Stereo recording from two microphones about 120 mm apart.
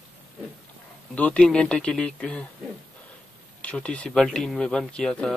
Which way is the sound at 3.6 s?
10° left (ahead or behind).